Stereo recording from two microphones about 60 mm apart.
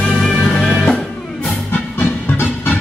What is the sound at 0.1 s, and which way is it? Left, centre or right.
Music, centre.